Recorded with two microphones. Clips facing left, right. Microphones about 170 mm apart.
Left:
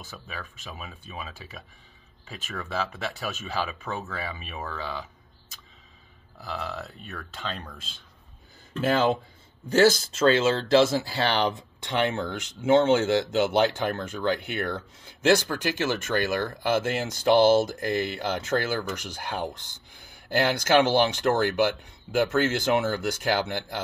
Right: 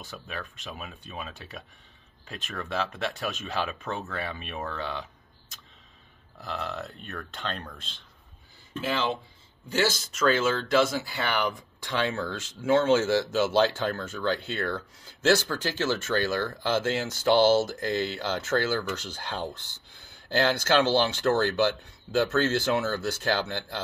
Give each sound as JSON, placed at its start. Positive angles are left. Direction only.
{"t": 0.0, "sound": "speech", "side_deg": 5}
{"t": 6.4, "sound": "speech", "side_deg": 5}
{"t": 8.8, "sound": "speech", "side_deg": 45}
{"t": 10.1, "sound": "speech", "side_deg": 25}